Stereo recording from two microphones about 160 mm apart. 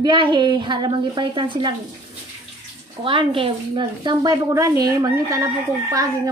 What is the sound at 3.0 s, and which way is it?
A woman's voice, 30° right (ahead or behind).